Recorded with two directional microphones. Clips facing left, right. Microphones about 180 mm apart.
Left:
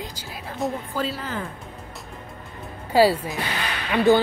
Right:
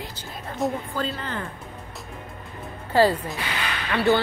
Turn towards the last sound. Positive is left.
turn(degrees=15)  # may be behind; listen again after turning